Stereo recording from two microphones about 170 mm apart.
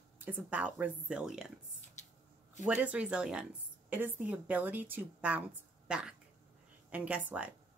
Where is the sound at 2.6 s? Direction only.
10° right (ahead or behind).